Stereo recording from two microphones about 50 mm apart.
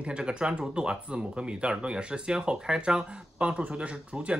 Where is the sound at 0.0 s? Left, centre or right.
Centre.